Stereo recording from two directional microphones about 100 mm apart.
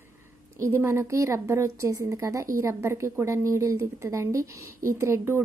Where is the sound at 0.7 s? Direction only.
25° right (ahead or behind).